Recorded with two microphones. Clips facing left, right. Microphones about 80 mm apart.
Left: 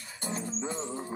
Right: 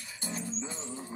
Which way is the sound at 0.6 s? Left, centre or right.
Left.